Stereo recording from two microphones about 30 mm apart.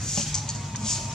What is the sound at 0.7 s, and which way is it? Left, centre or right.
Music, centre.